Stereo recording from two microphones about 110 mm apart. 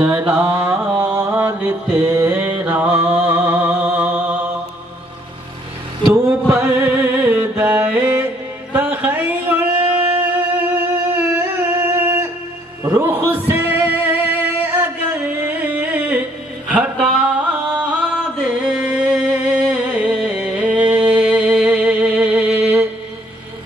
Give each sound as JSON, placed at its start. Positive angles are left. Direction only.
{"t": 0.0, "sound": "mantra", "side_deg": -15}
{"t": 6.5, "sound": "music", "side_deg": -20}
{"t": 8.7, "sound": "a sound", "side_deg": -15}
{"t": 12.0, "sound": "music", "side_deg": -20}